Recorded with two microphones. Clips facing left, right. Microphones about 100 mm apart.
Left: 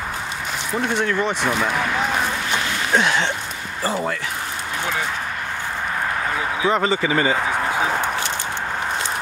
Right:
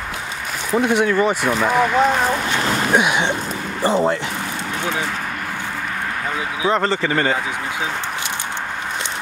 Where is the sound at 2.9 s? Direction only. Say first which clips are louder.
Left 1 dB; 15° right (ahead or behind).